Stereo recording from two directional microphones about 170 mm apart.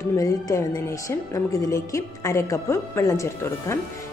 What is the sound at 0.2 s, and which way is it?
A woman's voice, 20° left (ahead or behind).